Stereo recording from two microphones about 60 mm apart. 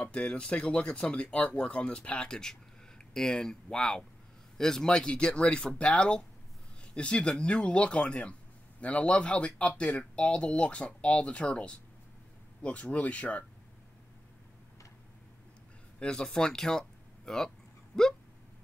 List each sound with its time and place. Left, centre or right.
0.0 s speech: centre
16.0 s speech: centre
17.9 s speech: left